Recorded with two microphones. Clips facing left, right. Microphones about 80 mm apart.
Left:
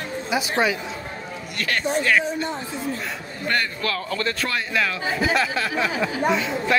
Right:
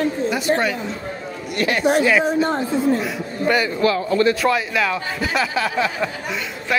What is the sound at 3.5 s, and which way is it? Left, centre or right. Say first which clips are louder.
A man's voice: right 7 dB; centre.